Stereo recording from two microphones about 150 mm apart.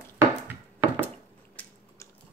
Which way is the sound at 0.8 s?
15° right (ahead or behind).